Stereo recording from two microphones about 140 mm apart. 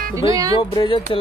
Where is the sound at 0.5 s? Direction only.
35° left (ahead or behind).